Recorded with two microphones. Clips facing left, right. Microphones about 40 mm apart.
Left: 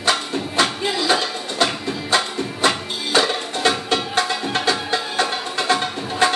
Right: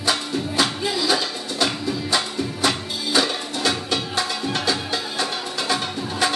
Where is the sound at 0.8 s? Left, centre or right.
Left.